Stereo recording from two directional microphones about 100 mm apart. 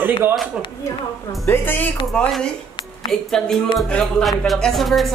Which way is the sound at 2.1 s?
5° left (ahead or behind).